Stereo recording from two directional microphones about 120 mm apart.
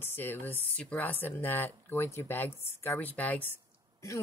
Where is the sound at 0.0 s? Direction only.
20° left (ahead or behind).